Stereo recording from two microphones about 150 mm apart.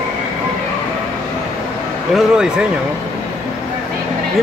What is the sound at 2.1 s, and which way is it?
Speech, 5° right (ahead or behind).